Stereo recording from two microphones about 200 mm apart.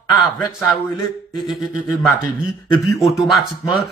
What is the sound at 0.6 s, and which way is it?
Speech, 20° left (ahead or behind).